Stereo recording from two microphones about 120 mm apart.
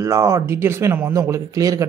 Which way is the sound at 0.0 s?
25° right (ahead or behind).